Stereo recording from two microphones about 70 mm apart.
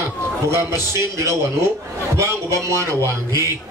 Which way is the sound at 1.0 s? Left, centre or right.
Right.